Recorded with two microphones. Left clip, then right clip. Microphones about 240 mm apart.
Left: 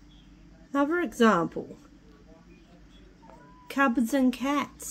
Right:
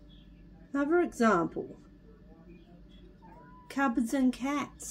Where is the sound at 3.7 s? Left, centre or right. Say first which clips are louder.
Left 5 dB; left.